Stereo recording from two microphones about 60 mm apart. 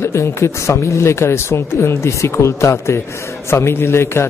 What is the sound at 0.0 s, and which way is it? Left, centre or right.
A man's voice, left.